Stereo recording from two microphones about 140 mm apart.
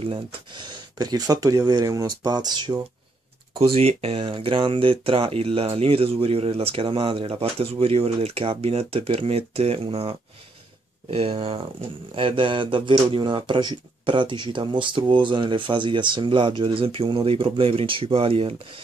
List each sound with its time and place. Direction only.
0.0 s speech: 35° right (ahead or behind)
3.5 s speech: 45° right (ahead or behind)